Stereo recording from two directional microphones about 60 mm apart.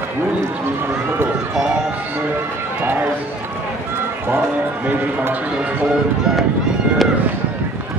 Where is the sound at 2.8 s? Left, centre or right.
Right.